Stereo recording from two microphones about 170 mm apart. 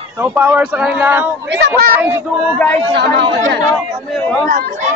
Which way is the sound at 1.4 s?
90° right.